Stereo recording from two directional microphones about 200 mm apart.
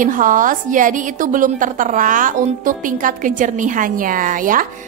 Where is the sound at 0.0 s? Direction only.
40° right (ahead or behind).